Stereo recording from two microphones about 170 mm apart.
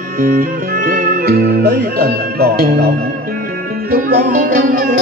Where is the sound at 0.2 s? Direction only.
55° right (ahead or behind).